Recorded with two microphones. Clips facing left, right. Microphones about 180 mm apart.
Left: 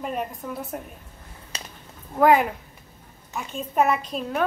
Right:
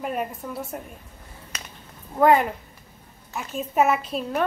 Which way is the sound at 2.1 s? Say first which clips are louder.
Even; centre (ahead or behind).